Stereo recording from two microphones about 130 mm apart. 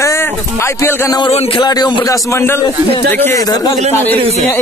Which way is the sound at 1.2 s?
50° left (ahead or behind).